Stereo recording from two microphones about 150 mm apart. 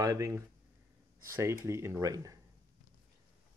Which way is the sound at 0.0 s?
20° right (ahead or behind).